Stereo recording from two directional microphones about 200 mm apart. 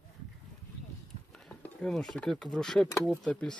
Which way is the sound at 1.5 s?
5° left (ahead or behind).